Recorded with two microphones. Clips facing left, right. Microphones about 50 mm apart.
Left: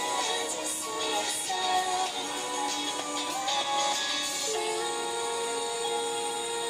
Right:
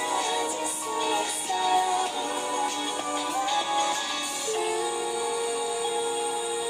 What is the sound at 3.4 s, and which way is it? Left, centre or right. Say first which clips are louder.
Music: right 2 dB; right.